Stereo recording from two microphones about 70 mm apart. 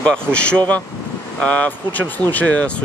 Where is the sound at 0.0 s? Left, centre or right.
Centre.